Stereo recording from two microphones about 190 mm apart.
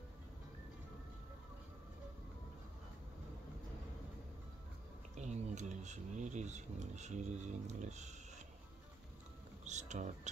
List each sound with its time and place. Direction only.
5.1 s speech: 35° right (ahead or behind)
9.7 s music: 40° right (ahead or behind)